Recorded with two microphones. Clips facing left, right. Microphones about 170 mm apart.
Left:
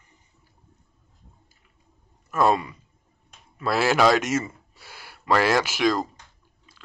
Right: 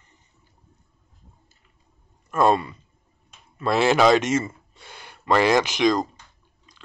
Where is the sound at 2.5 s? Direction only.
10° left (ahead or behind).